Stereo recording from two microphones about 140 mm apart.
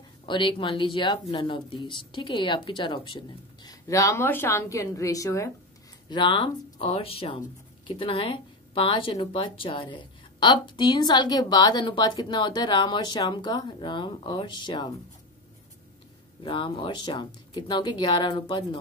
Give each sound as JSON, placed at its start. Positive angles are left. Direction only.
{"t": 0.3, "sound": "speech", "side_deg": 35}
{"t": 3.8, "sound": "speech", "side_deg": 20}
{"t": 6.0, "sound": "speech", "side_deg": 35}
{"t": 16.4, "sound": "speech", "side_deg": 35}